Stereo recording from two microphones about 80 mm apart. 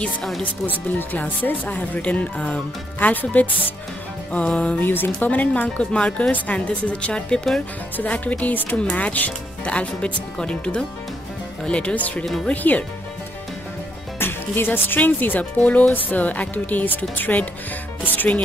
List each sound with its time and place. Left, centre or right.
0.0 s speech: centre
0.4 s speech: left
4.8 s speech: left
14.2 s speech: left